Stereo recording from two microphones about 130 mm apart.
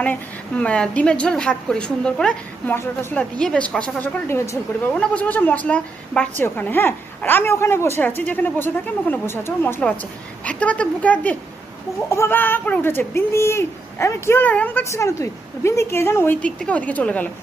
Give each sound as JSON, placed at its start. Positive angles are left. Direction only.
{"t": 0.0, "sound": "a woman's voice", "side_deg": 10}
{"t": 2.7, "sound": "a woman's voice", "side_deg": 20}
{"t": 3.3, "sound": "a woman's voice", "side_deg": 10}